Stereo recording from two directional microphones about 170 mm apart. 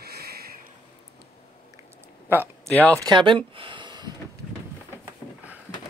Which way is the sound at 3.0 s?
25° right (ahead or behind).